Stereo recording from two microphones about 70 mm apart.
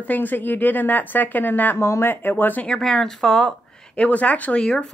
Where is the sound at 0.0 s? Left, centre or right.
Left.